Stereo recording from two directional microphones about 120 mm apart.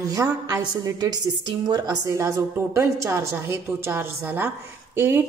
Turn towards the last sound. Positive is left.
turn(degrees=-20)  # may be behind; listen again after turning